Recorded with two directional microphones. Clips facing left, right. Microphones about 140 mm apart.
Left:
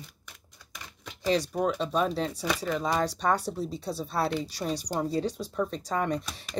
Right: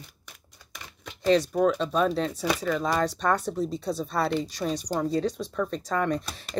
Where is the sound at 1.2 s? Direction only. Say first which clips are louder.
Right 5 dB; 10° left (ahead or behind).